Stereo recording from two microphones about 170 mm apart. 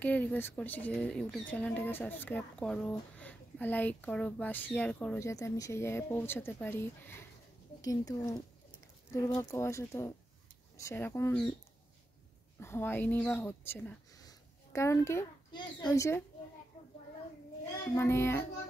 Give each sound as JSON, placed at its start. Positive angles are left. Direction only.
{"t": 0.0, "sound": "speech", "side_deg": 10}
{"t": 12.5, "sound": "speech", "side_deg": 15}
{"t": 17.9, "sound": "speech", "side_deg": 15}